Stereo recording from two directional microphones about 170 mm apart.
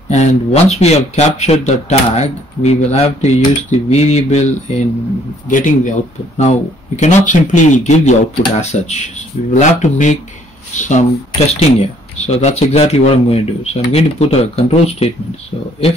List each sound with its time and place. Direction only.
0.1 s speech: 40° left (ahead or behind)